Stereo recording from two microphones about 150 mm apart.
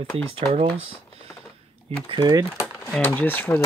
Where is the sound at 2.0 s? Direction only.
30° right (ahead or behind).